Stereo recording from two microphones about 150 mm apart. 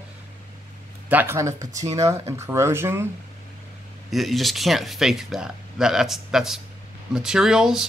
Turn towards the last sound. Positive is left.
turn(degrees=-5)  # may be behind; listen again after turning